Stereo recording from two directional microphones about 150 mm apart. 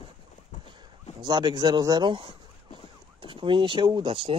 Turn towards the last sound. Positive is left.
turn(degrees=-35)  # may be behind; listen again after turning